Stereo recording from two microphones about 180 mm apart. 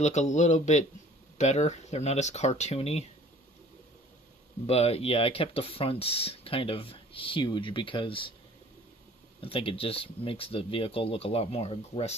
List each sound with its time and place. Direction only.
0.0 s speech: 40° left (ahead or behind)
4.6 s speech: 35° left (ahead or behind)
9.4 s speech: 30° left (ahead or behind)